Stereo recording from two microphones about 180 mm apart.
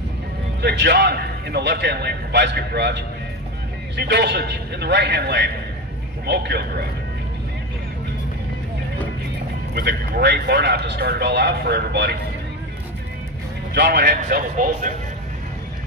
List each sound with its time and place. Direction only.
0.6 s a man's voice: 65° right (ahead or behind)
9.8 s speech: 60° right (ahead or behind)
13.7 s speech: 65° right (ahead or behind); by 14.9 s 50° right (ahead or behind)